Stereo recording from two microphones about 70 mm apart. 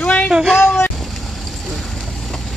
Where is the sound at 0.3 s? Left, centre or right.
Centre.